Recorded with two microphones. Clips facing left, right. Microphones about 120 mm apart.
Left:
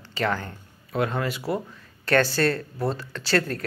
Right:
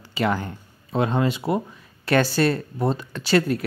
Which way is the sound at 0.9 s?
25° right (ahead or behind).